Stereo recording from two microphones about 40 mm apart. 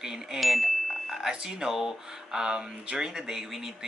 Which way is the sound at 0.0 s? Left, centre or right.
Centre.